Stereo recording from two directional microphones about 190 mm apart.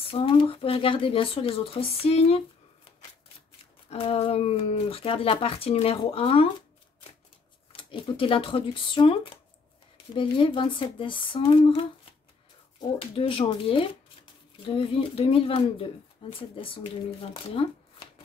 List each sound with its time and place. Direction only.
0.0 s speech: 30° left (ahead or behind)
3.9 s speech: 30° left (ahead or behind)
7.7 s speech: 30° left (ahead or behind)
13.1 s speech: 30° left (ahead or behind)